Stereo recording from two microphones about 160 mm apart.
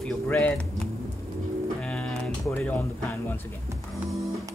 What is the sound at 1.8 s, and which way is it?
Music, 5° left (ahead or behind).